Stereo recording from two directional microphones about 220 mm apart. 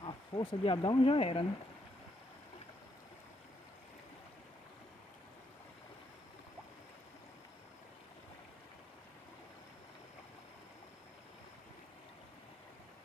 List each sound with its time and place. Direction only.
0.0 s speech: 20° left (ahead or behind)